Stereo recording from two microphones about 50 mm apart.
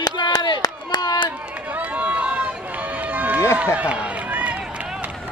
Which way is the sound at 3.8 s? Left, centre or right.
Right.